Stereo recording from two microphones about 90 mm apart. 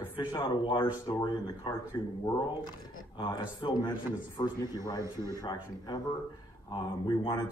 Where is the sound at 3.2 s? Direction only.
60° left (ahead or behind).